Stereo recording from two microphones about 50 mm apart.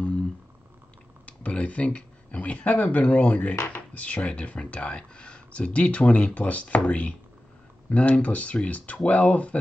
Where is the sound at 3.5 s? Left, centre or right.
Left.